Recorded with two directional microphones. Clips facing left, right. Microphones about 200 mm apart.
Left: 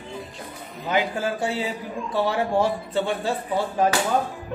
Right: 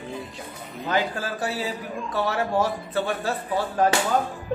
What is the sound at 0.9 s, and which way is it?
A man's voice, 20° left (ahead or behind).